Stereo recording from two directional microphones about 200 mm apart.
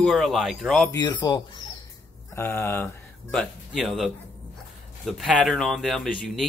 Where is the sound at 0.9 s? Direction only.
20° left (ahead or behind).